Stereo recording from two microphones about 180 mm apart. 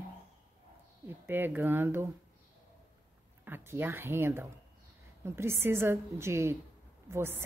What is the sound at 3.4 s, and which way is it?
A woman's voice, 15° right (ahead or behind).